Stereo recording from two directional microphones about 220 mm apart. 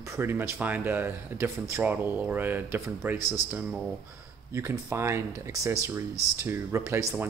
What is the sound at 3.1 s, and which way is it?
Speech, 15° left (ahead or behind).